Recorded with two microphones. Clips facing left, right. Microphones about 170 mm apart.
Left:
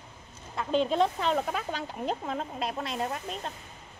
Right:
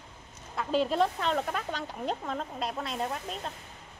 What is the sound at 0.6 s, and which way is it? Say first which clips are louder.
Speech: left 1 dB; 5° right (ahead or behind).